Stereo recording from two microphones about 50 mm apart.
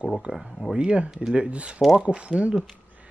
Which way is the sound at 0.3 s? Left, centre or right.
Right.